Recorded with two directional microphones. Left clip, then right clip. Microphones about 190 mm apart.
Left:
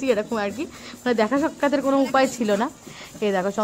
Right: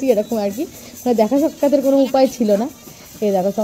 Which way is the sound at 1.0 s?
35° left (ahead or behind).